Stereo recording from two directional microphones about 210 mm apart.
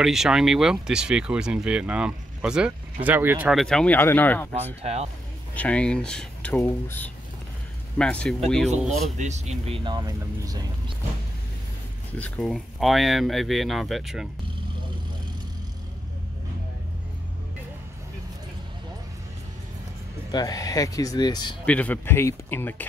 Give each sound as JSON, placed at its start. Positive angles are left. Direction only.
{"t": 0.0, "sound": "speech", "side_deg": 0}
{"t": 5.5, "sound": "speech", "side_deg": 5}
{"t": 9.2, "sound": "speech", "side_deg": -30}
{"t": 12.2, "sound": "speech", "side_deg": 5}
{"t": 20.2, "sound": "speech", "side_deg": 20}
{"t": 21.6, "sound": "speech", "side_deg": 5}